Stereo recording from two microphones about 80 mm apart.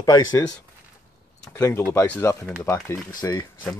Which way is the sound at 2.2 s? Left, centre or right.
Left.